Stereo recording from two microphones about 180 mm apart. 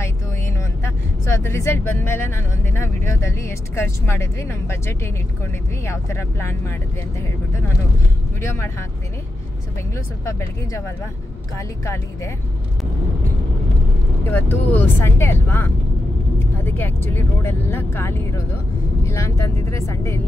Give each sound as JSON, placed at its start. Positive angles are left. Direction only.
{"t": 0.0, "sound": "vehicle", "side_deg": 15}
{"t": 1.2, "sound": "speech", "side_deg": 15}
{"t": 9.9, "sound": "speech", "side_deg": 15}
{"t": 14.3, "sound": "speech", "side_deg": 10}